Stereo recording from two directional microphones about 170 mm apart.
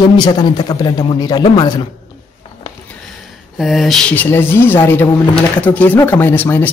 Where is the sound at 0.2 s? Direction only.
25° left (ahead or behind).